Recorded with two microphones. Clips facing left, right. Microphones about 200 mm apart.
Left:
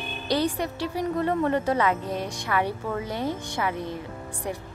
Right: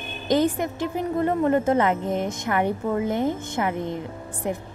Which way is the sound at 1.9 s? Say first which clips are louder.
Right 3 dB; 20° right (ahead or behind).